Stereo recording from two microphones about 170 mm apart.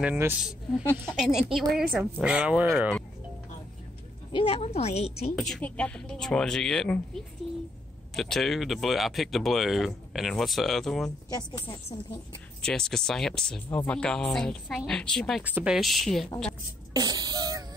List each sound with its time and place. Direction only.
0.0 s speech: 10° right (ahead or behind)
4.3 s a woman's voice: 30° left (ahead or behind)
5.3 s speech: centre (ahead or behind)
11.2 s a woman's voice: 25° left (ahead or behind)
12.6 s speech: 5° left (ahead or behind)
16.9 s beatboxing: 25° right (ahead or behind)